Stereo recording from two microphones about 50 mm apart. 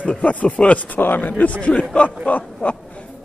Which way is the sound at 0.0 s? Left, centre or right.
Left.